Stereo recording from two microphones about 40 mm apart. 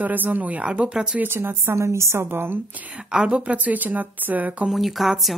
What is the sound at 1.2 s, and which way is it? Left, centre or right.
Speech, right.